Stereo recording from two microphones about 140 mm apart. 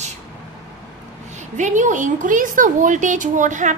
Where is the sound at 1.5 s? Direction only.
60° right (ahead or behind).